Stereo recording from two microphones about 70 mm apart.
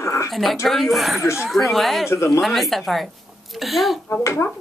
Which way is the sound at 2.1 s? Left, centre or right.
Left.